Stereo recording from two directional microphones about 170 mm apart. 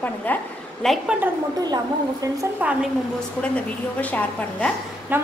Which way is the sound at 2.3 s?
10° right (ahead or behind).